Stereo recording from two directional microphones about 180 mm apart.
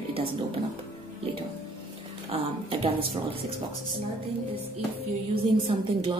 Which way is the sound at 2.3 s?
30° right (ahead or behind).